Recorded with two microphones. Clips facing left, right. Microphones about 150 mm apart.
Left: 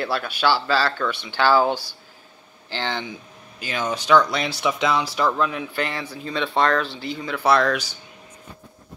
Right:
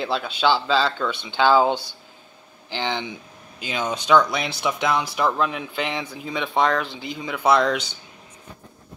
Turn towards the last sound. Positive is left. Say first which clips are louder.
# even
turn(degrees=-20)  # may be behind; listen again after turning